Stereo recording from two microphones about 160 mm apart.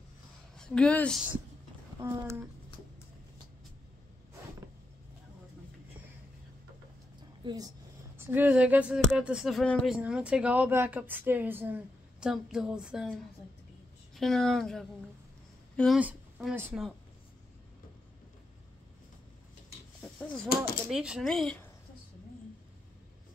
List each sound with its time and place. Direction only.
0.6 s speech: 5° left (ahead or behind)
2.0 s speech: 15° right (ahead or behind)
7.4 s a woman's voice: 25° right (ahead or behind)
8.2 s speech: 10° right (ahead or behind)
14.1 s speech: centre (ahead or behind)
16.0 s a woman's voice: 5° right (ahead or behind)
20.0 s a sound: 10° left (ahead or behind)
20.9 s speech: 5° right (ahead or behind)